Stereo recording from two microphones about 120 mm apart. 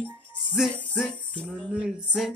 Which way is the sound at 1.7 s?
5° right (ahead or behind).